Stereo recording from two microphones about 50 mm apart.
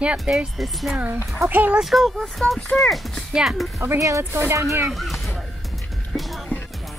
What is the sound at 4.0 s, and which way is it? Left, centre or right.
Speech, right.